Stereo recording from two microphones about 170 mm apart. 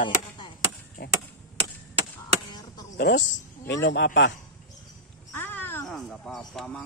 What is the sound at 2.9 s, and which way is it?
A woman's voice, 90° left.